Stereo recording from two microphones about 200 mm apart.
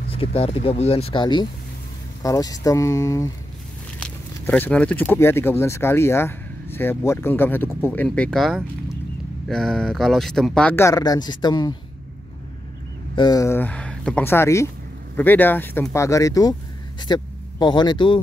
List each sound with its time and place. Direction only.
0.1 s speech: 30° left (ahead or behind)
4.0 s a sound: 5° left (ahead or behind)
5.1 s speech: 10° left (ahead or behind)
13.1 s speech: 20° left (ahead or behind)